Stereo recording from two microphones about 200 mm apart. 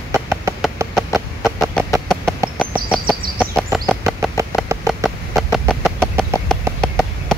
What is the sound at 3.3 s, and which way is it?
Chicken, centre (ahead or behind).